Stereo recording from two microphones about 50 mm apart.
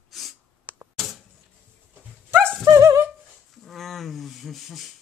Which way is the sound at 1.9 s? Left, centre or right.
Right.